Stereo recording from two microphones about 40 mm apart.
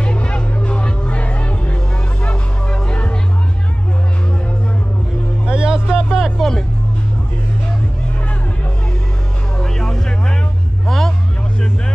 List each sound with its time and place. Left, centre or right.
0.0 s music: left
5.5 s music: right
5.9 s a sound: centre
6.3 s music: centre
9.6 s music: centre